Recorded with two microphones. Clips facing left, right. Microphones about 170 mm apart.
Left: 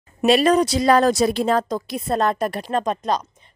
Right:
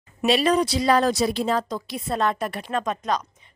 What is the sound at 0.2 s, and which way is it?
A woman's voice, 45° left (ahead or behind).